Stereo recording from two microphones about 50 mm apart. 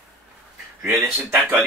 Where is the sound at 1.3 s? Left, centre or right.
Right.